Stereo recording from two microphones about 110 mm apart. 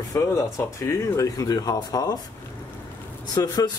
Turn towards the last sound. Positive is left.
turn(degrees=35)  # may be behind; listen again after turning